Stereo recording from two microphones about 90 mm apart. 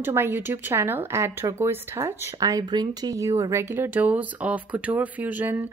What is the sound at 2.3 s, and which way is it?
Speech, 40° right (ahead or behind).